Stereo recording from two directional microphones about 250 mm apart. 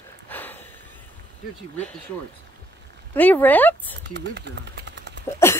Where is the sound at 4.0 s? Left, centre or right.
Right.